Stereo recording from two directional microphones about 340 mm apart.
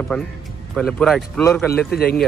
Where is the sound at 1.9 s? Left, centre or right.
Left.